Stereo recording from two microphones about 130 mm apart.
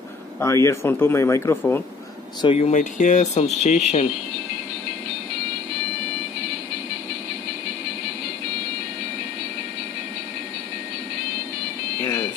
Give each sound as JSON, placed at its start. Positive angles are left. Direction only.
{"t": 0.4, "sound": "speech", "side_deg": 20}
{"t": 2.4, "sound": "speech", "side_deg": 45}
{"t": 2.7, "sound": "speech", "side_deg": 65}
{"t": 12.0, "sound": "music", "side_deg": 20}